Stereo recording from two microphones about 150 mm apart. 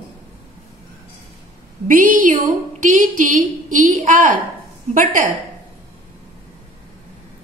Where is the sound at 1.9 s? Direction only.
65° right (ahead or behind).